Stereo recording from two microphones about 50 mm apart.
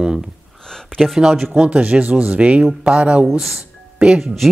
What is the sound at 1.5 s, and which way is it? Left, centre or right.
A woman's voice, right.